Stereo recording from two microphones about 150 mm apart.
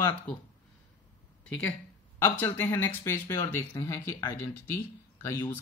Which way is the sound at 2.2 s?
15° left (ahead or behind).